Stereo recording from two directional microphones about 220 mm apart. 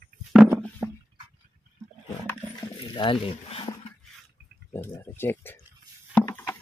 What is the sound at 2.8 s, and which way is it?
Speech, 20° left (ahead or behind).